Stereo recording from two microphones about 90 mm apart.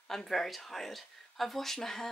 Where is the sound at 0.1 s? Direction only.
5° left (ahead or behind).